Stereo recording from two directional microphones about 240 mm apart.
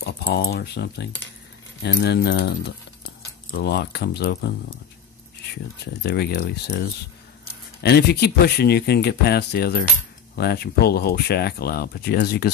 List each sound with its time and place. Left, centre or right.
0.0 s speech: left
3.5 s speech: left
6.0 s speech: left